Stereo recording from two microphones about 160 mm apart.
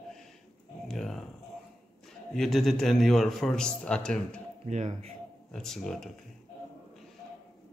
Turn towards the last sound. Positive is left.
turn(degrees=0)  # may be behind; listen again after turning